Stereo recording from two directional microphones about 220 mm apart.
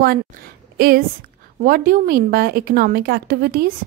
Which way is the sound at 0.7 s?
40° right (ahead or behind).